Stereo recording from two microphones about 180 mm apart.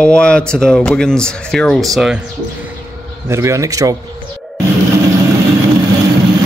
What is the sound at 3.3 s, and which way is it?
Speech, 15° right (ahead or behind).